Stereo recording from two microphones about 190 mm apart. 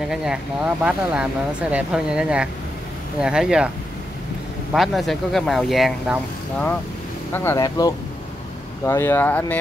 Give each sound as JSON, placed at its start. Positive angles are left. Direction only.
{"t": 0.1, "sound": "speech", "side_deg": -5}
{"t": 4.7, "sound": "speech", "side_deg": 0}
{"t": 7.3, "sound": "speech", "side_deg": 15}